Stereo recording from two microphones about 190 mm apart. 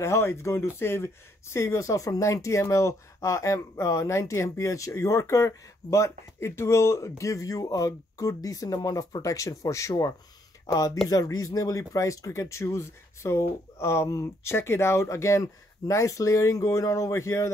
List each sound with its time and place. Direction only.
0.0 s speech: 15° left (ahead or behind)